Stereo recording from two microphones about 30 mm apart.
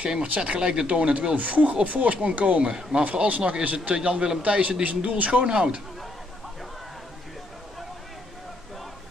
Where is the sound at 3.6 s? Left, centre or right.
Right.